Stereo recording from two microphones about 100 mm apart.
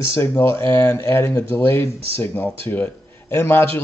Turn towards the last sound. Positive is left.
turn(degrees=20)  # may be behind; listen again after turning